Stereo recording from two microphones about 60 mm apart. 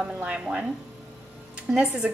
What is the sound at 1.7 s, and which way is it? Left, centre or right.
Speech, centre.